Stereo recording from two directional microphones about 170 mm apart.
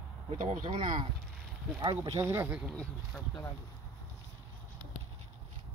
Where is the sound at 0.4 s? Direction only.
50° right (ahead or behind).